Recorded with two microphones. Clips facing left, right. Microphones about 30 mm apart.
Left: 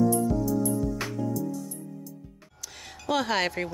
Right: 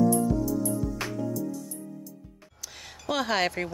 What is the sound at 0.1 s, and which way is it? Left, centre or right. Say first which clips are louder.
Music: even; centre.